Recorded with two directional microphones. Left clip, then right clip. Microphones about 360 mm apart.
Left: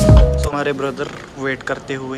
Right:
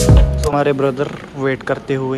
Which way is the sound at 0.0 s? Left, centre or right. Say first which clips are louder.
Left 1 dB; centre.